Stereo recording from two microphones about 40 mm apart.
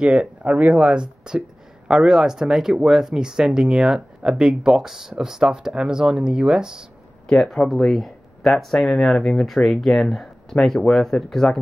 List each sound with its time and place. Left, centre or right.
0.0 s speech: right
0.4 s speech: right; by 6.9 s centre
7.3 s speech: centre